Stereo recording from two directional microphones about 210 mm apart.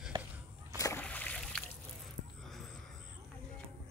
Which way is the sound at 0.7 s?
15° left (ahead or behind).